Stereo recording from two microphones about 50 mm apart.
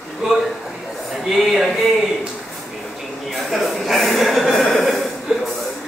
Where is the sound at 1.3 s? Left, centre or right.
Centre.